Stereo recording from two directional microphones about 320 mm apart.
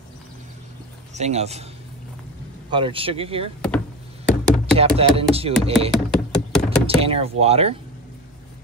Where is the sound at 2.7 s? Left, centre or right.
Centre.